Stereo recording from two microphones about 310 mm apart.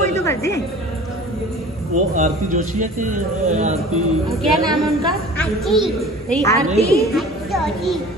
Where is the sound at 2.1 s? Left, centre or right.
Right.